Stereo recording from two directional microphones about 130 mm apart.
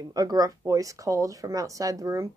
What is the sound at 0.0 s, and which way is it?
Speech, 30° right (ahead or behind).